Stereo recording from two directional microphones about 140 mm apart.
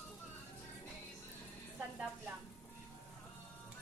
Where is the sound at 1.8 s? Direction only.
10° right (ahead or behind).